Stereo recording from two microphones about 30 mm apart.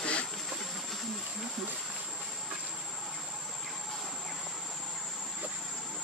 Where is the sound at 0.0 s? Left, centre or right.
Left.